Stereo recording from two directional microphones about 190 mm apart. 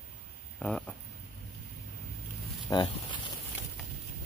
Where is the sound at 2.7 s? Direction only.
25° left (ahead or behind).